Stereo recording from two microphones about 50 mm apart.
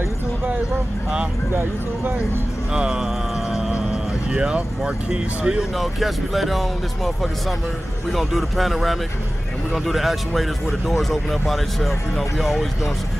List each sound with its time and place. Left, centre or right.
1.5 s speech: right
2.7 s a sound: centre
3.7 s speech: right
5.8 s speech: centre
8.1 s speech: centre